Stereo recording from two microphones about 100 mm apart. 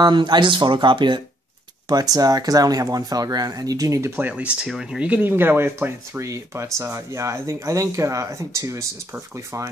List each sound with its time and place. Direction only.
0.0 s speech: 50° right (ahead or behind)
1.9 s speech: 40° right (ahead or behind)